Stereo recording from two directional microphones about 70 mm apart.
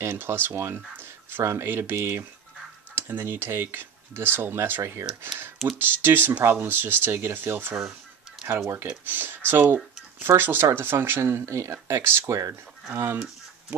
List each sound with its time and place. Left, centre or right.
0.0 s speech: right
12.4 s speech: right
12.9 s speech: right